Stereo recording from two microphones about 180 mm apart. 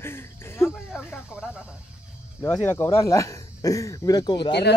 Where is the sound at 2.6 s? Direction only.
15° left (ahead or behind).